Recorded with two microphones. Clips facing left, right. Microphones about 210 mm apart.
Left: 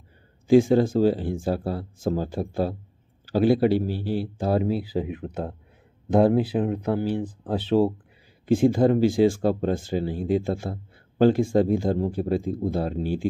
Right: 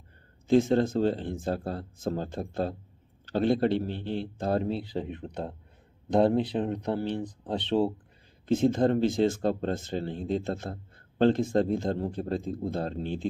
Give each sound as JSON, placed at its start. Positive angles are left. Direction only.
{"t": 0.5, "sound": "speech", "side_deg": 5}